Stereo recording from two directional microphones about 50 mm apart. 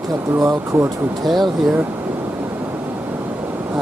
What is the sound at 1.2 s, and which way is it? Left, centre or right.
Speech, centre.